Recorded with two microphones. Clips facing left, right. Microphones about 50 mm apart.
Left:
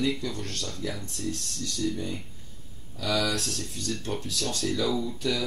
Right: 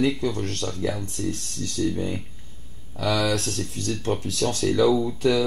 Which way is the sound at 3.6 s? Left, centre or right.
Right.